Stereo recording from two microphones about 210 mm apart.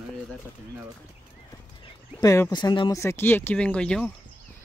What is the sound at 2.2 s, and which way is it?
Speech, 15° left (ahead or behind).